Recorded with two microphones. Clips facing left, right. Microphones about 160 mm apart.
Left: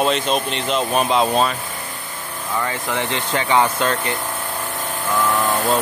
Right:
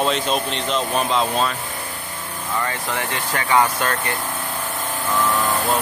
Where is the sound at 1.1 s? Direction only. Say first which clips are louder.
Left 4 dB; 20° left (ahead or behind).